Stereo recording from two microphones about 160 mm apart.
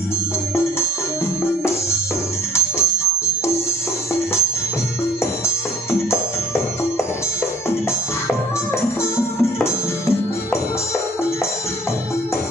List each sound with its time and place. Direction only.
2.5 s music: 15° left (ahead or behind)
5.9 s music: 15° left (ahead or behind)
9.1 s music: 15° left (ahead or behind)